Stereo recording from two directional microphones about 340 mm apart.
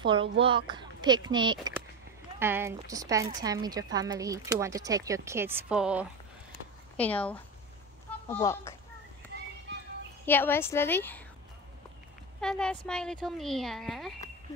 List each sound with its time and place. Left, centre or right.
0.0 s a woman's voice: centre
9.7 s child singing: right
10.2 s a woman's voice: centre
12.4 s speech: centre